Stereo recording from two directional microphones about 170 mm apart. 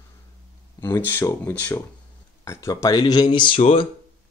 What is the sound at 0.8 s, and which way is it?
Speech, 15° left (ahead or behind).